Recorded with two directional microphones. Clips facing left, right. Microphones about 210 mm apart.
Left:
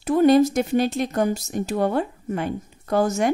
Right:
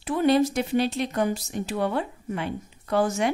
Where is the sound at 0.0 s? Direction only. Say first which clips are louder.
Left 5 dB; 45° left (ahead or behind).